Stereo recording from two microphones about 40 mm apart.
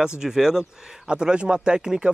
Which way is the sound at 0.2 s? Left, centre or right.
Centre.